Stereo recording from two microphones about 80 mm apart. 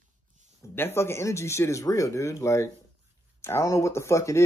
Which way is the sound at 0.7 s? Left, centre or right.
Left.